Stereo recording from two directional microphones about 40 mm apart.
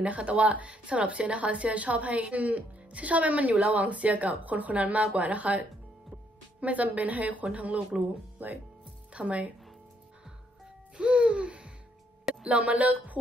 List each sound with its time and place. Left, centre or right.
0.0 s speech: right
11.0 s speech: right